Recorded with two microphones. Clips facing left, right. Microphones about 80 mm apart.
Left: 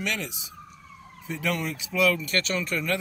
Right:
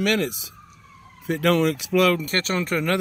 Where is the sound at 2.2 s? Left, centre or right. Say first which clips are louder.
Right 3 dB; right.